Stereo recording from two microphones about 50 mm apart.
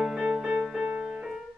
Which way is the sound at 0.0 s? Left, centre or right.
Centre.